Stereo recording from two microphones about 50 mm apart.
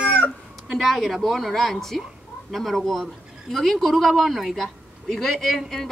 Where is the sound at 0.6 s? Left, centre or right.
Centre.